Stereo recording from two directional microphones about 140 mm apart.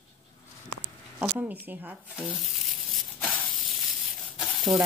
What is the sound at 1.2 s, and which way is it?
Speech, 15° right (ahead or behind).